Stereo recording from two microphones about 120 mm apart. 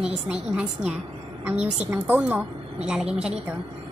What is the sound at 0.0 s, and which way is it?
A woman's voice, 5° right (ahead or behind).